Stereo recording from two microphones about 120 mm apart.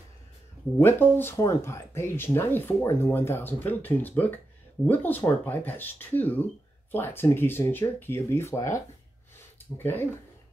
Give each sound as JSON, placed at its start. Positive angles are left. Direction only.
{"t": 0.7, "sound": "speech", "side_deg": 20}